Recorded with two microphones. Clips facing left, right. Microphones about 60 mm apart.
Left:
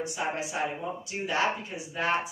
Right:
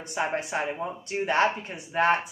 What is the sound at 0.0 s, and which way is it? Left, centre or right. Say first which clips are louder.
A woman's voice: right 2 dB; right.